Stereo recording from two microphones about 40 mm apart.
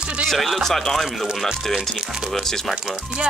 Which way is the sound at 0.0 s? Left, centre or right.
Right.